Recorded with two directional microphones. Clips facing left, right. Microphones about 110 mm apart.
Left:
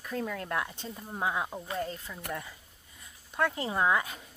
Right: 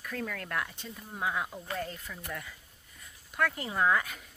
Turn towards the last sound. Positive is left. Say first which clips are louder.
# even
turn(degrees=25)  # may be behind; listen again after turning